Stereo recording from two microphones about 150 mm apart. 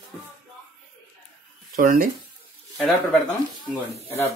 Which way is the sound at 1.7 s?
70° right (ahead or behind).